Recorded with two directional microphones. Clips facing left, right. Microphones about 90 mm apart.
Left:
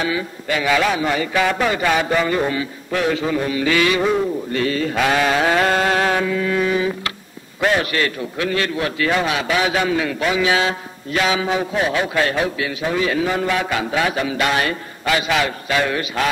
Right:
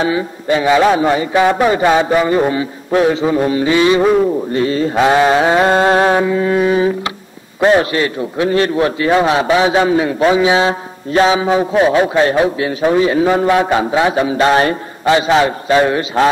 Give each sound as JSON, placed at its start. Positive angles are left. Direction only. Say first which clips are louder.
{"t": 0.0, "sound": "a man's voice", "louder": "right 6 dB", "side_deg": -30}